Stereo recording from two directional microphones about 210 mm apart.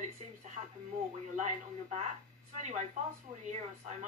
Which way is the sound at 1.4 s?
35° right (ahead or behind).